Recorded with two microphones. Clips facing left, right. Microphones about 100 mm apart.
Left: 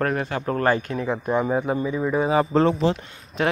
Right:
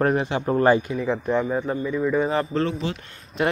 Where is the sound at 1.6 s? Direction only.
15° left (ahead or behind).